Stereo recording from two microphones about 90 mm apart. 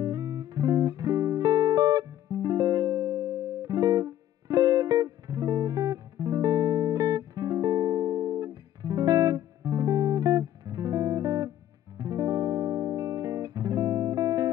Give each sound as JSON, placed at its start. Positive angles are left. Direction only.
{"t": 0.0, "sound": "music", "side_deg": -45}